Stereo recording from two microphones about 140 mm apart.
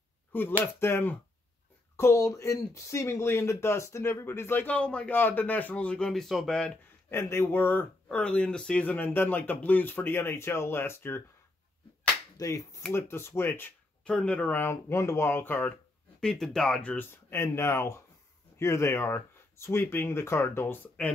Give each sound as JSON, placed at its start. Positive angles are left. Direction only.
{"t": 0.3, "sound": "speech", "side_deg": 15}
{"t": 7.1, "sound": "speech", "side_deg": 20}
{"t": 12.4, "sound": "speech", "side_deg": 25}
{"t": 16.2, "sound": "speech", "side_deg": 5}